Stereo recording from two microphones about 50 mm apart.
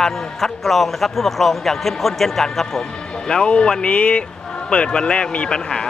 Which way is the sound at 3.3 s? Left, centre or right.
Centre.